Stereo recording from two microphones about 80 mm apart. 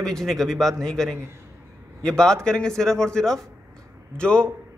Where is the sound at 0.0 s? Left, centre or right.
Centre.